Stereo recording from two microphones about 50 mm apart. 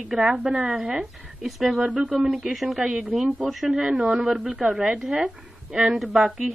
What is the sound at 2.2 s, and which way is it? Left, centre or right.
Speech, centre.